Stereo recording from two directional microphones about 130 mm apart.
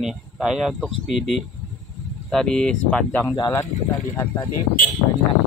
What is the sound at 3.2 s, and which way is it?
Speech, 30° left (ahead or behind).